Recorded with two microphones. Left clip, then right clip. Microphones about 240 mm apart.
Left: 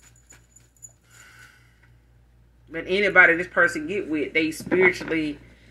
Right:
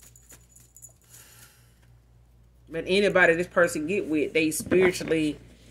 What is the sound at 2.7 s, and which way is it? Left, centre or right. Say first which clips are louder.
Speech: left 4 dB; right.